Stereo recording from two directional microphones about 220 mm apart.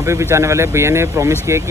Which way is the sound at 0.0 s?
15° right (ahead or behind).